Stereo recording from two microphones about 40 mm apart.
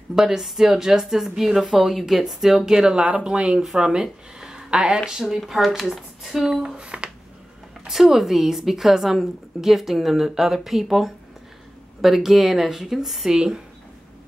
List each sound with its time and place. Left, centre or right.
0.1 s a woman's voice: centre
5.2 s a woman's voice: centre
6.8 s a sound: right
7.9 s a woman's voice: centre